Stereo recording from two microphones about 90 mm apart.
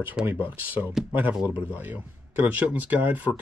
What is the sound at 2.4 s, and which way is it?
Speech, 20° right (ahead or behind).